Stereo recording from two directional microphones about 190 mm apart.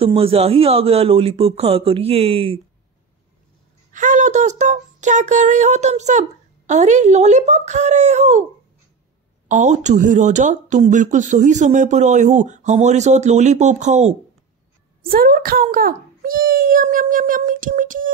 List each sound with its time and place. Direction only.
0.0 s speech: 30° right (ahead or behind)
3.9 s speech: 40° right (ahead or behind)
9.5 s speech: 40° right (ahead or behind)
15.0 s a child's voice: 50° right (ahead or behind)